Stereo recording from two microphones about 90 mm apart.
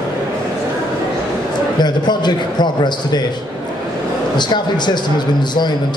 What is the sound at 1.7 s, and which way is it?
Speech, 55° left (ahead or behind).